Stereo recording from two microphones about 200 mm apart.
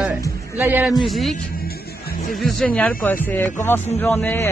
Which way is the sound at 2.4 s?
Centre (ahead or behind).